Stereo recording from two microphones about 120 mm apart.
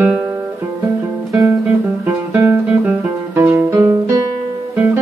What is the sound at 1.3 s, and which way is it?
Guitar, 25° right (ahead or behind).